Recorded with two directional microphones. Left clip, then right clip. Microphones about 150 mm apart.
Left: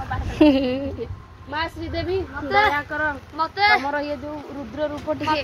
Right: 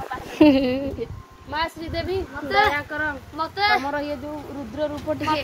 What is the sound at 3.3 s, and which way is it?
Speech, 50° right (ahead or behind).